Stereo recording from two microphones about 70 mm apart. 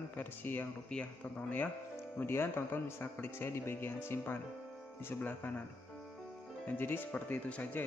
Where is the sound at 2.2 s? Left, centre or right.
Left.